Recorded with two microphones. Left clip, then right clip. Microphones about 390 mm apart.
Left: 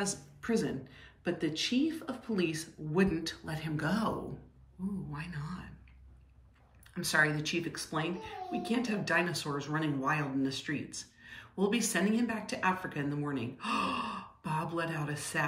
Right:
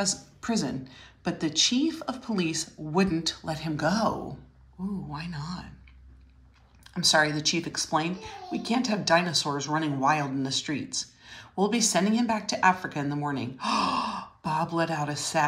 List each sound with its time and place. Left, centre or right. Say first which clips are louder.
0.0 s speech: right 7 dB; centre
5.1 s speech: right 6 dB; centre
6.9 s speech: right 6 dB; centre